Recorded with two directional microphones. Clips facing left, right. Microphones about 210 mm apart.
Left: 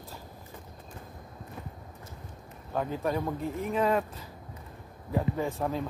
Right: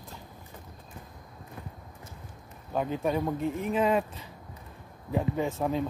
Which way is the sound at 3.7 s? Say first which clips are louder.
Right 1 dB; 15° right (ahead or behind).